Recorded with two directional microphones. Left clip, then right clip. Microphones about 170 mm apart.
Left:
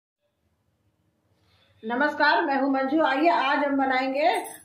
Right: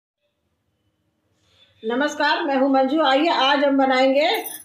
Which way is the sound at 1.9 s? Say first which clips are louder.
Right 1 dB; 35° right (ahead or behind).